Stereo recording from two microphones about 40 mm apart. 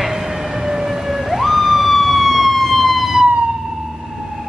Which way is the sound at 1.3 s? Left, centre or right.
Centre.